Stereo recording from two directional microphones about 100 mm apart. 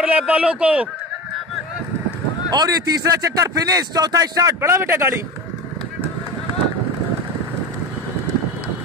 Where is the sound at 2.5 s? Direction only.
40° right (ahead or behind); by 5.1 s 25° right (ahead or behind).